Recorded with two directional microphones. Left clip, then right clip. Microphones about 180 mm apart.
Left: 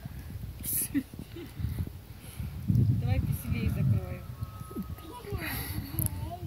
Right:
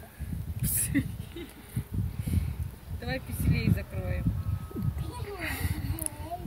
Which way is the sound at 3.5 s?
Centre (ahead or behind).